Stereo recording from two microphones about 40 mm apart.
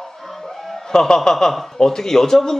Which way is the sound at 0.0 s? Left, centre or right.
Centre.